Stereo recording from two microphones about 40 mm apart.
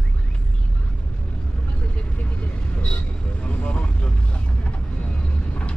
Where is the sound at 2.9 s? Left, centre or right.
Left.